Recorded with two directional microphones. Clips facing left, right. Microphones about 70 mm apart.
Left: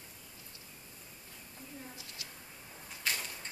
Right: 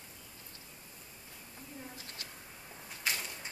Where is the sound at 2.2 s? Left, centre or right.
Right.